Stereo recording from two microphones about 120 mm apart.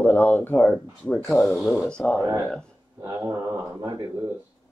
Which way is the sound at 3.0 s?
25° right (ahead or behind).